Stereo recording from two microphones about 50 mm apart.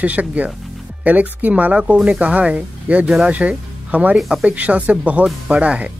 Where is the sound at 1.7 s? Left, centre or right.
Right.